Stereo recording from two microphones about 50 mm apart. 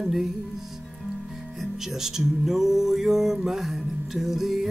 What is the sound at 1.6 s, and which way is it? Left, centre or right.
Music, centre.